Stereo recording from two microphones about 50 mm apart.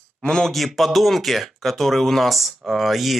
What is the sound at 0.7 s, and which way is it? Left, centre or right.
Speech, centre.